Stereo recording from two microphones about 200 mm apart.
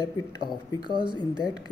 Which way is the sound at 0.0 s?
20° left (ahead or behind).